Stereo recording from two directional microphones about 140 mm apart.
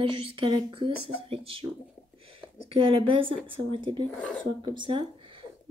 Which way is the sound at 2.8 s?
40° right (ahead or behind).